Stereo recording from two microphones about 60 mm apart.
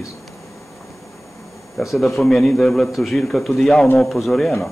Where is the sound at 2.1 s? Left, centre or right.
Centre.